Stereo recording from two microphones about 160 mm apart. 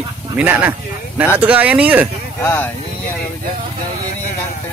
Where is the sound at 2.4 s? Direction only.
15° left (ahead or behind).